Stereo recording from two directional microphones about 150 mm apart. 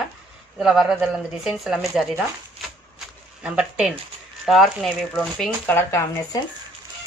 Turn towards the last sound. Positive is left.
turn(degrees=15)  # may be behind; listen again after turning